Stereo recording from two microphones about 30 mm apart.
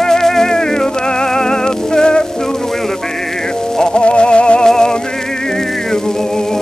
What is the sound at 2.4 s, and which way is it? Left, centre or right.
Music, centre.